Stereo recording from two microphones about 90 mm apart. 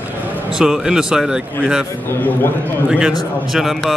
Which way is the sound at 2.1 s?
20° left (ahead or behind).